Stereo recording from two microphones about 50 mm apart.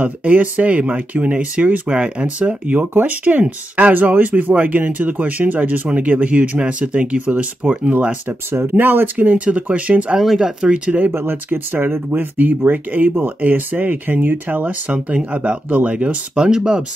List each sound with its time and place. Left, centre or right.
0.0 s speech: right
8.5 s speech: right
9.1 s speech: right
10.1 s speech: centre
10.9 s speech: right
14.9 s speech: right
16.4 s speech: centre